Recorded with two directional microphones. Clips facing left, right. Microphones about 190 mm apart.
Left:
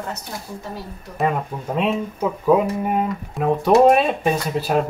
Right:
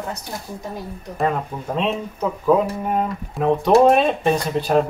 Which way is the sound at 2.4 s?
10° left (ahead or behind).